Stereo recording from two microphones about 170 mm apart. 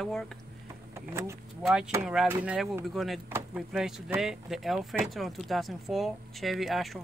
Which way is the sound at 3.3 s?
10° right (ahead or behind).